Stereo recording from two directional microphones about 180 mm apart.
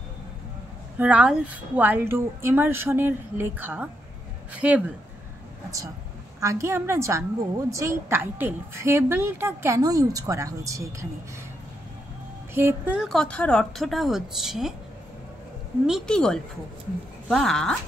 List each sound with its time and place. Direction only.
0.9 s a woman's voice: 10° right (ahead or behind)
6.4 s a woman's voice: 15° right (ahead or behind)
12.5 s speech: 10° right (ahead or behind)
15.9 s speech: 5° left (ahead or behind)